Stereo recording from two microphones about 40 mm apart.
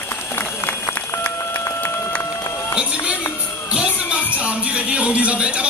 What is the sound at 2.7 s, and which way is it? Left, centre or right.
Run, right.